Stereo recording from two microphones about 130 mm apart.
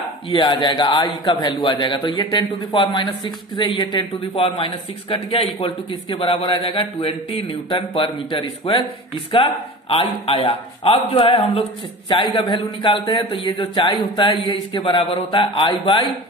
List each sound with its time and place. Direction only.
0.4 s a man's voice: 40° left (ahead or behind)
9.8 s a man's voice: 45° left (ahead or behind)